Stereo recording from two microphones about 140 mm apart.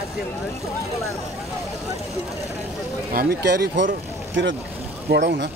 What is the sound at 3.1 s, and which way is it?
Speech, 90° right.